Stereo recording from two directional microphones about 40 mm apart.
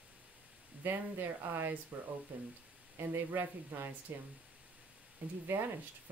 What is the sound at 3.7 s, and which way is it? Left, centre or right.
Speech, right.